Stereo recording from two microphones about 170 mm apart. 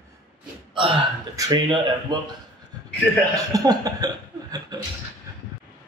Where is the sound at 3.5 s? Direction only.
20° right (ahead or behind).